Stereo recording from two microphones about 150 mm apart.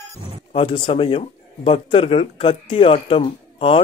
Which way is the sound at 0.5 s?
35° left (ahead or behind).